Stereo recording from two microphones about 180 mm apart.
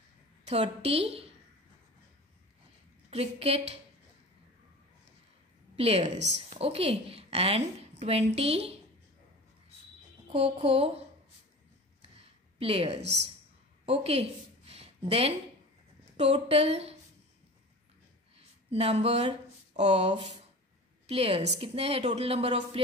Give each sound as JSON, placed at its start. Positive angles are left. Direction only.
{"t": 0.5, "sound": "a woman's voice", "side_deg": -35}
{"t": 3.1, "sound": "a woman's voice", "side_deg": -35}
{"t": 5.8, "sound": "a woman's voice", "side_deg": -35}
{"t": 10.3, "sound": "a woman's voice", "side_deg": -30}
{"t": 12.2, "sound": "a woman's voice", "side_deg": -30}
{"t": 13.8, "sound": "a sound", "side_deg": -35}
{"t": 16.2, "sound": "a woman's voice", "side_deg": -35}
{"t": 18.3, "sound": "a woman's voice", "side_deg": -35}